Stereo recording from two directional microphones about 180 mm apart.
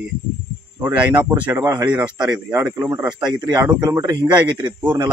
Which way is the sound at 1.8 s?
5° right (ahead or behind).